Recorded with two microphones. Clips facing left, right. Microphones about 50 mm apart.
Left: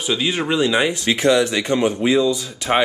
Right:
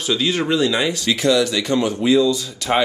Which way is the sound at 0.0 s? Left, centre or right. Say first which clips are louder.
Right 1 dB; centre.